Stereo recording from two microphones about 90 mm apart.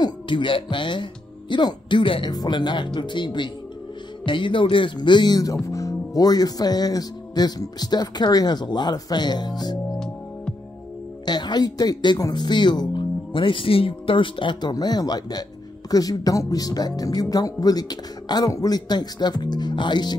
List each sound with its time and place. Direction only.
0.0 s speech: 65° left (ahead or behind)
2.3 s speech: 55° left (ahead or behind)
9.9 s music: 5° left (ahead or behind)
11.2 s speech: 50° left (ahead or behind)